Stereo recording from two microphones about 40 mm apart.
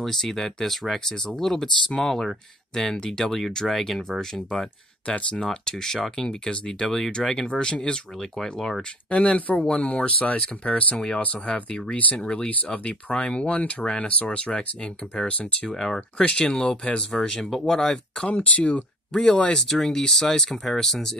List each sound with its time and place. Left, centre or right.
0.0 s speech: centre
5.0 s speech: left
5.4 s speech: centre
9.1 s speech: left
11.5 s speech: left
13.1 s speech: left
15.7 s speech: centre
16.3 s speech: left
17.3 s speech: centre
18.2 s speech: left
19.1 s speech: centre
20.6 s speech: centre